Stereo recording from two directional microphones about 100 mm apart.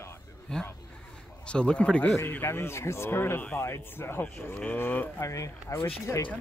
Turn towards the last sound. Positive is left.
turn(degrees=25)  # may be behind; listen again after turning